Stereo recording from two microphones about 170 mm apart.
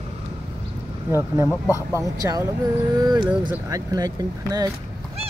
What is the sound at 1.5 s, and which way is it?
Speech, 15° left (ahead or behind).